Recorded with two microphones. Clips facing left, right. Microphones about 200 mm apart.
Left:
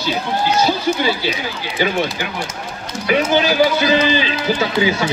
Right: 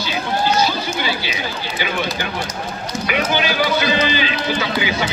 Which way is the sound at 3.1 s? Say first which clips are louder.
Left 5 dB; 40° left (ahead or behind).